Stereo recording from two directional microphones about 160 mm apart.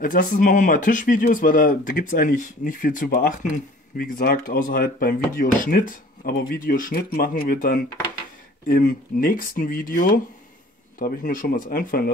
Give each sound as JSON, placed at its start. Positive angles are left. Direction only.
{"t": 0.0, "sound": "speech", "side_deg": 60}